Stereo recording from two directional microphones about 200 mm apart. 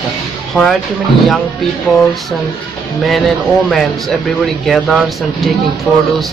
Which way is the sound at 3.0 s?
Centre (ahead or behind).